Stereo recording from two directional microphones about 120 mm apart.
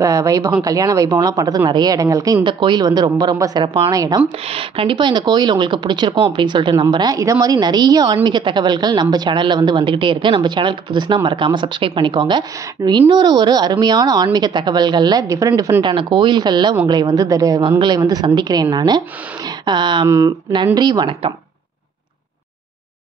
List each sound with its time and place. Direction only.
0.0 s a woman's voice: 30° right (ahead or behind)
3.6 s speech: 50° right (ahead or behind)
3.9 s speech: 30° right (ahead or behind)
4.5 s a woman's voice: 50° right (ahead or behind); by 15.8 s 30° right (ahead or behind)
15.8 s a woman's voice: 40° right (ahead or behind)